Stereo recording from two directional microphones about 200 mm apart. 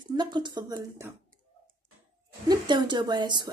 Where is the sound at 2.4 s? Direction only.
20° right (ahead or behind).